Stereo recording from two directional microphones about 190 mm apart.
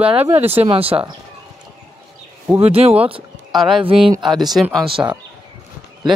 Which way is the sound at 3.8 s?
25° right (ahead or behind).